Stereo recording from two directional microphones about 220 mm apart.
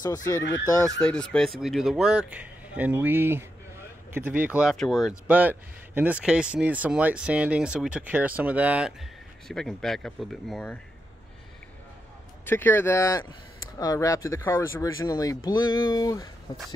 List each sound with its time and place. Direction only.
0.0 s speech: 15° left (ahead or behind)
0.9 s speech: 5° left (ahead or behind)
12.4 s speech: 10° left (ahead or behind)